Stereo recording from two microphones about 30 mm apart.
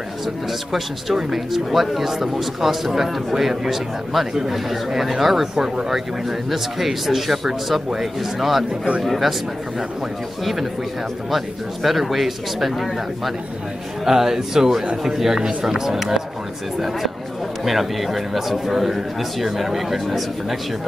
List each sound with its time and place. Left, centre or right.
0.5 s speech: centre
4.3 s speech: centre
4.6 s a man's voice: centre
10.4 s a man's voice: centre
14.0 s speech: centre
17.6 s a man's voice: centre